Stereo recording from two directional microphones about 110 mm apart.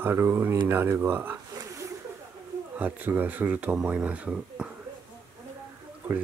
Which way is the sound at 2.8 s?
20° right (ahead or behind).